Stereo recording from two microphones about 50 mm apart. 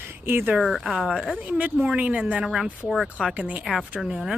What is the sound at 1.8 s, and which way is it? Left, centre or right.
Speech, right.